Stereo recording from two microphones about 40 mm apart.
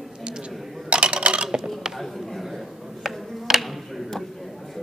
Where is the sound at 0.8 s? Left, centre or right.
Right.